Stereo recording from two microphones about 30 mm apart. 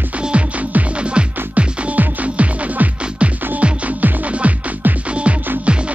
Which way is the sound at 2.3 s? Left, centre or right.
Right.